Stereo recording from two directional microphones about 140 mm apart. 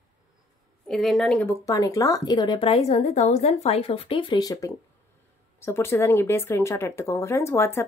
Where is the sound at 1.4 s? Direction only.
25° left (ahead or behind).